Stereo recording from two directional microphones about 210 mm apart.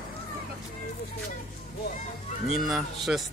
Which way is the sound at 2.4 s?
Centre (ahead or behind).